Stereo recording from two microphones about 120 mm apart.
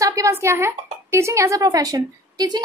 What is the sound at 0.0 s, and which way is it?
A child's voice, 25° right (ahead or behind).